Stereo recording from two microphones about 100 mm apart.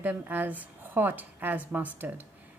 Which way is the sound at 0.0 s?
15° right (ahead or behind).